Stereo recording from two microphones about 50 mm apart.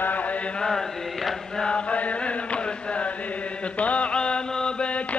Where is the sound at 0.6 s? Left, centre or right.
Centre.